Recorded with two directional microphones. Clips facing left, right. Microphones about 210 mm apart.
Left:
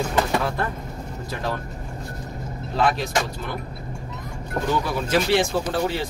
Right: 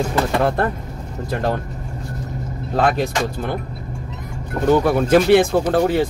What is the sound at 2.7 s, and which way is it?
Speech, 55° right (ahead or behind).